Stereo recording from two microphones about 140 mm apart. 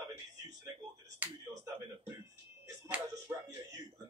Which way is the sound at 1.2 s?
10° right (ahead or behind).